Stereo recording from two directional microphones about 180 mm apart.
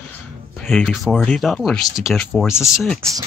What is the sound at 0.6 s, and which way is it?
Speech, centre (ahead or behind).